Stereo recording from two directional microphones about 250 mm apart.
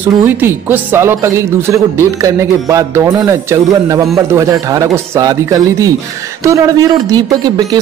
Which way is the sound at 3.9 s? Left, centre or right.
Centre.